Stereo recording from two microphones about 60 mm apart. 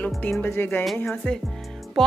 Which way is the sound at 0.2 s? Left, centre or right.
Left.